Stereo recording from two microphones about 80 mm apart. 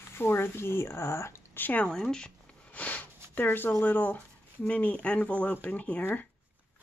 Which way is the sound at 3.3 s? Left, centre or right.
Left.